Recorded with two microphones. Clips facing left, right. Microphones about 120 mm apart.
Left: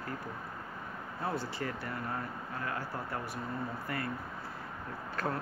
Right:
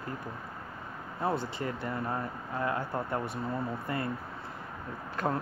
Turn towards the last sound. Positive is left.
turn(degrees=-20)  # may be behind; listen again after turning